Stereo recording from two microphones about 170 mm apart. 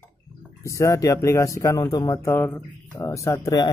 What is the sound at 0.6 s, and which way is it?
A man's voice, 20° left (ahead or behind).